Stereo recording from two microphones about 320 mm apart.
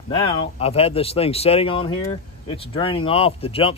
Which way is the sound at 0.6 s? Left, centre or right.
Centre.